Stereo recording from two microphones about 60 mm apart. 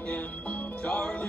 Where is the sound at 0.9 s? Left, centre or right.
Centre.